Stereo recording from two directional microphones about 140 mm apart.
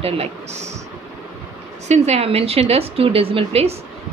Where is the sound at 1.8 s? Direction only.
50° right (ahead or behind).